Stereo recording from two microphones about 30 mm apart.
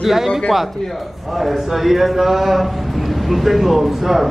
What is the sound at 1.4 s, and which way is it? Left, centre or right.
A man's voice, centre.